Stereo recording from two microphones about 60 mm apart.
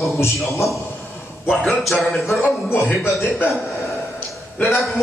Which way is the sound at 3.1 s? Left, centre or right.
Left.